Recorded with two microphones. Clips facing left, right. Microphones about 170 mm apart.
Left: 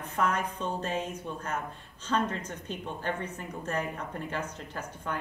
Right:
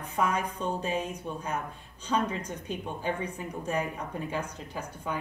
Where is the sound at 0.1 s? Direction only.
10° right (ahead or behind).